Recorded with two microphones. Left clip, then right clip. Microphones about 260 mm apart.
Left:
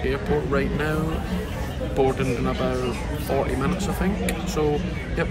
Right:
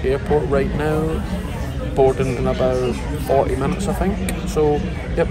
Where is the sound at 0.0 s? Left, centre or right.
Centre.